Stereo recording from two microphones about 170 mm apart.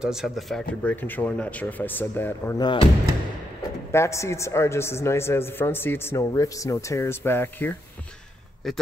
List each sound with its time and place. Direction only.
0.0 s speech: 5° right (ahead or behind)
2.6 s speech: 30° left (ahead or behind)
3.9 s speech: 15° left (ahead or behind)
8.6 s speech: centre (ahead or behind)